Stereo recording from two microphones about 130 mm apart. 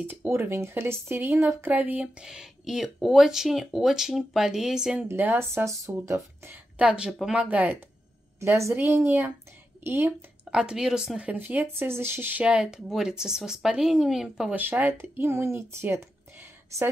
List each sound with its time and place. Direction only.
0.0 s speech: 15° right (ahead or behind)
6.8 s speech: 5° right (ahead or behind)
10.5 s speech: 5° right (ahead or behind)